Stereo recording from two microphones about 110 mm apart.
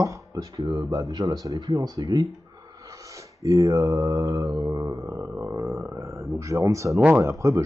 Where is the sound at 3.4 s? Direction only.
30° right (ahead or behind).